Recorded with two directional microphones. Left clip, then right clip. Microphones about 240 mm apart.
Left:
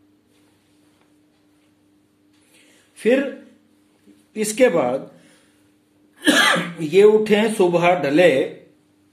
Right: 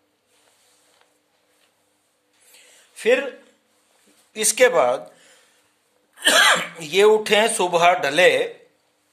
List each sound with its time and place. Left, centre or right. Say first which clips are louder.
3.0 s speech: left 1 dB; right
4.3 s speech: even; right
6.1 s speech: right 1 dB; right